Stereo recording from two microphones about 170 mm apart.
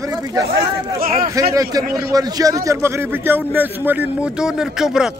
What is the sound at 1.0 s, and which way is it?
Speech, 55° right (ahead or behind).